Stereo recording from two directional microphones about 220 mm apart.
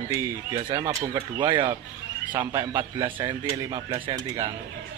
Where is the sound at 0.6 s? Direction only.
20° right (ahead or behind).